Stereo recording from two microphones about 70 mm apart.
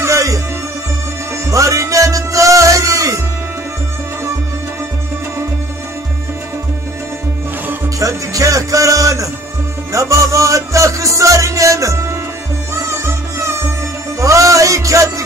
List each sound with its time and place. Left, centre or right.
0.0 s music: right
1.5 s music: right
8.0 s music: right